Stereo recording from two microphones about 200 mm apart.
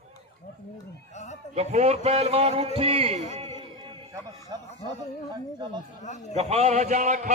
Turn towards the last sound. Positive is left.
turn(degrees=-40)  # may be behind; listen again after turning